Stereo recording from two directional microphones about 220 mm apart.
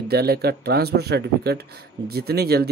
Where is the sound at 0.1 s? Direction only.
45° right (ahead or behind).